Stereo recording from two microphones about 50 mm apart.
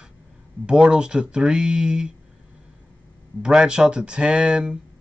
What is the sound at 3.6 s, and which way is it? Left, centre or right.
Speech, centre.